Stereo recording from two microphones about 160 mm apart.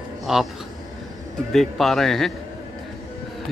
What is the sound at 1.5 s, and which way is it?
Speech, centre (ahead or behind).